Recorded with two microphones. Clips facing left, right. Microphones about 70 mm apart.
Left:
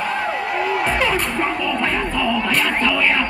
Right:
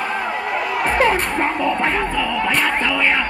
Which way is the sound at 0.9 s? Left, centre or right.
Right.